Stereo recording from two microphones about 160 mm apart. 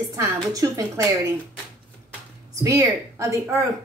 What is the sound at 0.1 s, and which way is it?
A woman's voice, 20° right (ahead or behind).